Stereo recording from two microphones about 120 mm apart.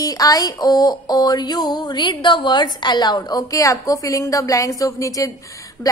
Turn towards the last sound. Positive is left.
turn(degrees=30)  # may be behind; listen again after turning